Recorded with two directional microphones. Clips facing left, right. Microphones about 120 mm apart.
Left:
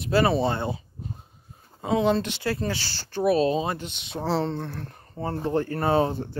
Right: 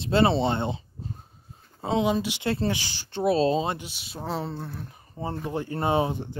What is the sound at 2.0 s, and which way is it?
Speech, 10° right (ahead or behind).